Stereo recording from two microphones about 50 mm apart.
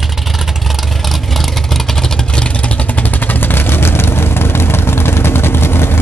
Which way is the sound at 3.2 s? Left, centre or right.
Left.